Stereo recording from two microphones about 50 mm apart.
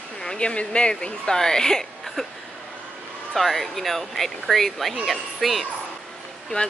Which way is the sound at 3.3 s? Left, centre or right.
Centre.